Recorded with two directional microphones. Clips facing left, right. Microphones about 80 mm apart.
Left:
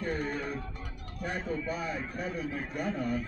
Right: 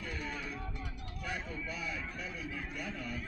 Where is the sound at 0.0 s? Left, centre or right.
Left.